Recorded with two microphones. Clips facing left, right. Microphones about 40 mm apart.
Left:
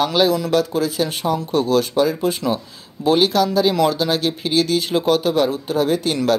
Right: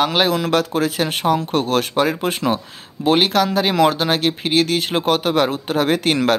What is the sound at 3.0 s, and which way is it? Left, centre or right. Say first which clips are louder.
Speech: even; right.